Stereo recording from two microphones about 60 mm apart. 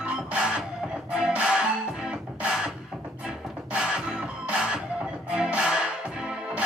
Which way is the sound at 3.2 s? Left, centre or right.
Centre.